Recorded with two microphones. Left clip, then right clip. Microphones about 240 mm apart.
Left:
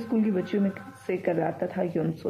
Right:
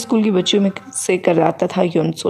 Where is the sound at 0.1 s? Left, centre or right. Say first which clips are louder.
Right 12 dB; right.